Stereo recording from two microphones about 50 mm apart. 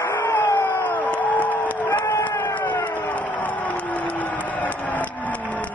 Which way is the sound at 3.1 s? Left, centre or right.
Left.